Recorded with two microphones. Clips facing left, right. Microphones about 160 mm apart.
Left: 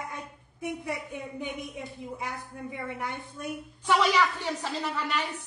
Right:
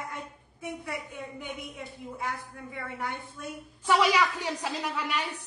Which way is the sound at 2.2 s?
20° left (ahead or behind).